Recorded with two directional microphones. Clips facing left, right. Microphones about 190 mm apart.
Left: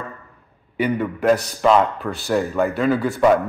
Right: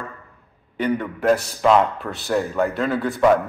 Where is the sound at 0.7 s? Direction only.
5° left (ahead or behind).